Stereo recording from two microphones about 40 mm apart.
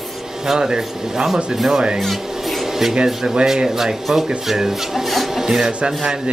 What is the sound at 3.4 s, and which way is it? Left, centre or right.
Speech, centre.